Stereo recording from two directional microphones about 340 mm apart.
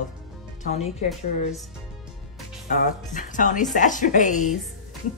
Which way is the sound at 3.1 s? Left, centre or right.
Left.